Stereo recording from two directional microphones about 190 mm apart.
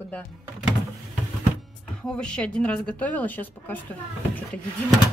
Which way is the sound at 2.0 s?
5° left (ahead or behind).